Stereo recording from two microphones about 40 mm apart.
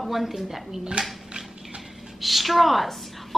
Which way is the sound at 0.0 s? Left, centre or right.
Centre.